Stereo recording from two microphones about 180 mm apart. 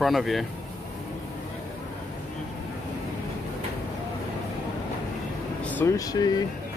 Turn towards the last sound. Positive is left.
turn(degrees=20)  # may be behind; listen again after turning